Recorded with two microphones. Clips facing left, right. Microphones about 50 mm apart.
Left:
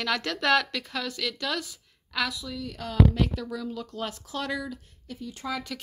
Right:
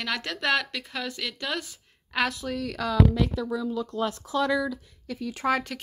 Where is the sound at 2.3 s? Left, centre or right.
Right.